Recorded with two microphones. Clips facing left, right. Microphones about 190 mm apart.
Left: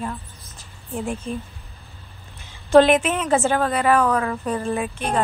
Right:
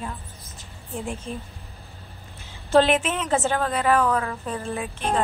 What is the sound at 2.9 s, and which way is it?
A woman's voice, 60° left (ahead or behind).